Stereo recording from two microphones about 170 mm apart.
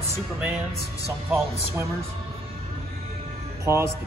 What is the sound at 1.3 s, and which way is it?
Speech, 15° right (ahead or behind).